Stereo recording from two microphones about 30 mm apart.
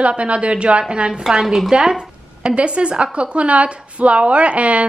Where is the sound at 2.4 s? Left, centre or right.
Right.